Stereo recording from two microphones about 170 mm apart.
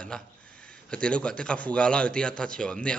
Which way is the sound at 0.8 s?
5° left (ahead or behind).